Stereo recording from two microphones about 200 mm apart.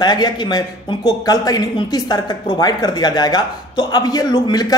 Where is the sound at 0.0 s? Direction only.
20° left (ahead or behind).